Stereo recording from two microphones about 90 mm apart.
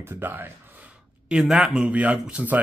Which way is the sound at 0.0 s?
25° right (ahead or behind).